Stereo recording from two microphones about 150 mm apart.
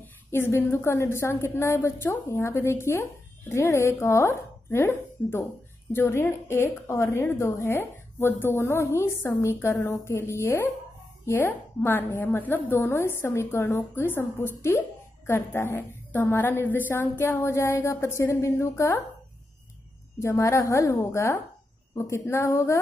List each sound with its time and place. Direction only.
0.0 s a woman's voice: 15° left (ahead or behind)
20.2 s a woman's voice: 20° left (ahead or behind)